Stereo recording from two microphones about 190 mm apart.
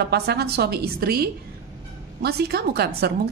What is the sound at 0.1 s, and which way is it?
A woman's voice, 60° right (ahead or behind).